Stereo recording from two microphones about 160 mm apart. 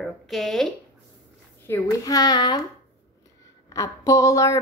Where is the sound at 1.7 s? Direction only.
25° left (ahead or behind).